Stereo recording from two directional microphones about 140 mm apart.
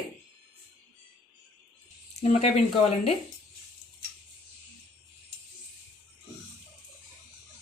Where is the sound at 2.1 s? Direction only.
50° left (ahead or behind).